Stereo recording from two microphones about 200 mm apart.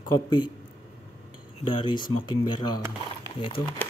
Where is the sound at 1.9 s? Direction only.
20° left (ahead or behind).